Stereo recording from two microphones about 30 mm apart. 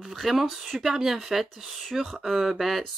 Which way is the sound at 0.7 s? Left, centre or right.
Centre.